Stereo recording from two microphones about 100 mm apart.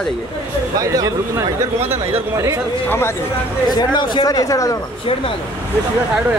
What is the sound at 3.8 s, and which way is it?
Speech, 50° left (ahead or behind).